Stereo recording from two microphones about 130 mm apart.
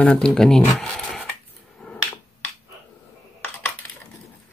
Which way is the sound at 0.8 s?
5° left (ahead or behind).